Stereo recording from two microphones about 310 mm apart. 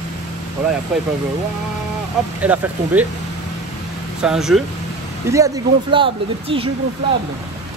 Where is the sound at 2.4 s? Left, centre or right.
Centre.